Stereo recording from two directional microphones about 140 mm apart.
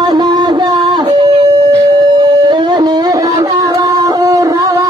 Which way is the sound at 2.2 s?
35° right (ahead or behind).